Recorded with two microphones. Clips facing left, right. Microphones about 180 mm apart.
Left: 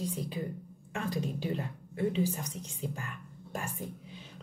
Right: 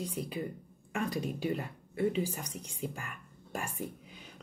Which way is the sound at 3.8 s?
10° right (ahead or behind).